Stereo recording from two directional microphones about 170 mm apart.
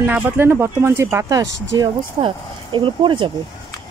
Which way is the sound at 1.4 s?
90° right.